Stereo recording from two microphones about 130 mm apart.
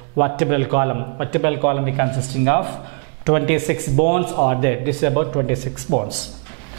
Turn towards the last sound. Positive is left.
turn(degrees=-5)  # may be behind; listen again after turning